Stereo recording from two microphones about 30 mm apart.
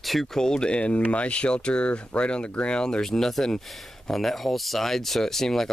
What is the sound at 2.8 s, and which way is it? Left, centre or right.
Speech, left.